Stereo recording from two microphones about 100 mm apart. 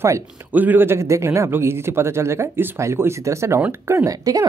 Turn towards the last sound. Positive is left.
turn(degrees=-35)  # may be behind; listen again after turning